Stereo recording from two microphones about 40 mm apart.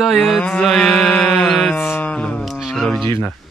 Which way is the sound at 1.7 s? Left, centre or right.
Left.